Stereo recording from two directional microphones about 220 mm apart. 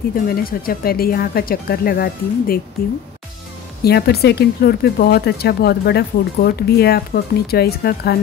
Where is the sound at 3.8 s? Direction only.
45° left (ahead or behind).